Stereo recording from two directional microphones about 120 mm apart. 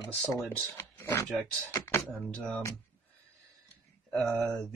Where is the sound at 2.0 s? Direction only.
10° left (ahead or behind).